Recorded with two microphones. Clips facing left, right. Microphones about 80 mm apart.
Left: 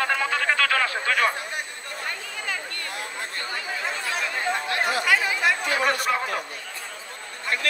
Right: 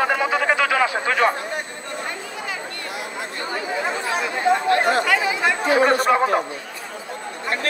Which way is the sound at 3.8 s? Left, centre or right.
Right.